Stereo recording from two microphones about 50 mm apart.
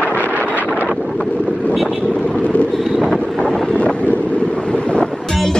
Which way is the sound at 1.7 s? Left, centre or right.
Centre.